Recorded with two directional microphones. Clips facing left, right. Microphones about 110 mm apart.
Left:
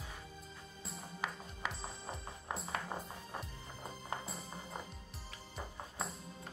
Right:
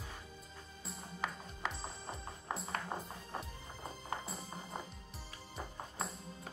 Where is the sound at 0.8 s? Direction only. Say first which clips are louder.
Right 1 dB; 5° left (ahead or behind).